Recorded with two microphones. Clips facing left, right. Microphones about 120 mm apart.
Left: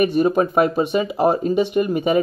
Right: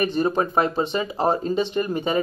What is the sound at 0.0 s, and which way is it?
Speech, 15° left (ahead or behind).